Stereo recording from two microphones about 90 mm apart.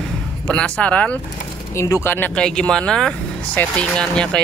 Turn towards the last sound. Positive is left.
turn(degrees=10)  # may be behind; listen again after turning